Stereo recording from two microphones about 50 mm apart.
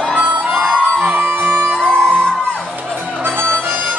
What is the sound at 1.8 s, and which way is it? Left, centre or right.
Music, centre.